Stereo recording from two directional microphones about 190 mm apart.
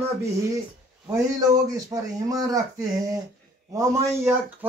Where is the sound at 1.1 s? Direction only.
20° right (ahead or behind).